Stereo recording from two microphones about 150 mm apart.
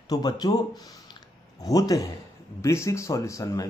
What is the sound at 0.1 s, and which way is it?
Speech, 25° left (ahead or behind).